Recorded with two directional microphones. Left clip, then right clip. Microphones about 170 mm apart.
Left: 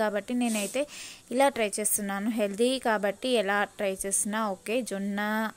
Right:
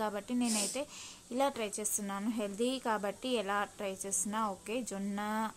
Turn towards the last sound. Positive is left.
turn(degrees=30)  # may be behind; listen again after turning